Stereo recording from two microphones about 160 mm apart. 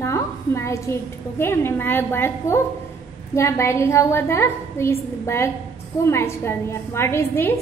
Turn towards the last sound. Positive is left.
turn(degrees=15)  # may be behind; listen again after turning